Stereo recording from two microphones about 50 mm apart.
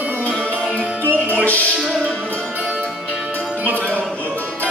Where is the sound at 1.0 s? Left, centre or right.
Right.